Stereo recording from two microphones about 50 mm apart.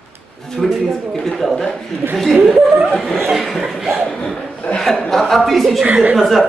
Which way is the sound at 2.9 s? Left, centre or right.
Centre.